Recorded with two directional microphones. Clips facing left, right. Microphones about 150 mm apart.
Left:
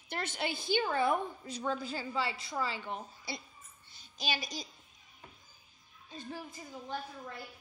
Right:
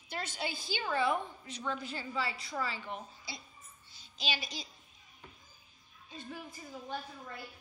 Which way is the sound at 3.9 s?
45° left (ahead or behind).